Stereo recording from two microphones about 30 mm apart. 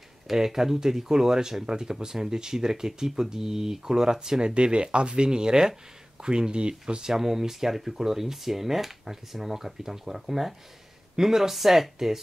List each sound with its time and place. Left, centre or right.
0.3 s speech: centre
4.6 s speech: right
7.1 s speech: centre